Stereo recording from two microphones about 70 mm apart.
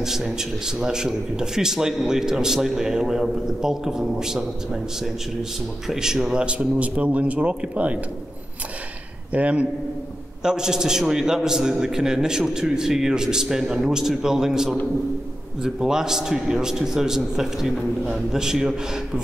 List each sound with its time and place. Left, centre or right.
0.0 s a man's voice: centre
5.9 s a man's voice: centre
9.3 s a man's voice: centre
10.4 s a man's voice: centre